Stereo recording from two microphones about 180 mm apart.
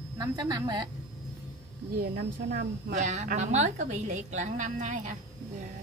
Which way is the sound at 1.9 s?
60° right (ahead or behind).